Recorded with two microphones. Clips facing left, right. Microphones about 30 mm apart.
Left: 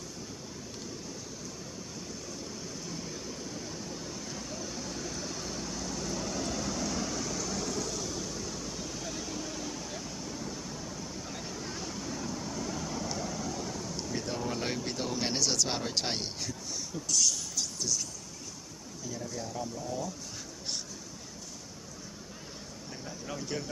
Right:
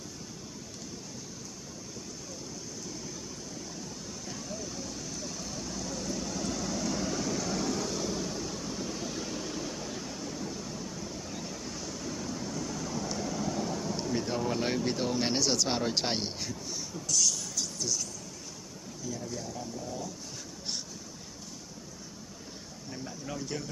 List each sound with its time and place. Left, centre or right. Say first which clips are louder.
4.4 s vehicle: even; centre
12.0 s vehicle: right 2 dB; centre
17.1 s a sound: even; centre
19.0 s speech: right 1 dB; centre
23.0 s speech: even; centre